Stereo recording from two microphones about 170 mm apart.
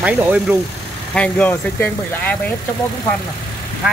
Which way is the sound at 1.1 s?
5° left (ahead or behind).